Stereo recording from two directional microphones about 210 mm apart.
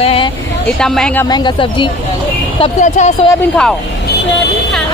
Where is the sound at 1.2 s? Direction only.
20° left (ahead or behind).